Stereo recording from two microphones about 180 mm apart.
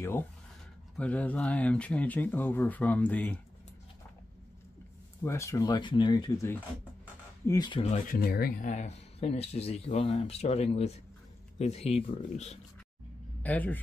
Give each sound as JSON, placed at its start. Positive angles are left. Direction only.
{"t": 0.9, "sound": "speech", "side_deg": 5}
{"t": 5.2, "sound": "speech", "side_deg": 15}
{"t": 7.8, "sound": "speech", "side_deg": 45}
{"t": 13.4, "sound": "a man's voice", "side_deg": 10}